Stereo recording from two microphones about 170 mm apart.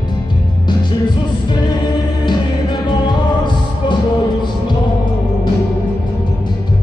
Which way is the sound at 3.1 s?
25° left (ahead or behind).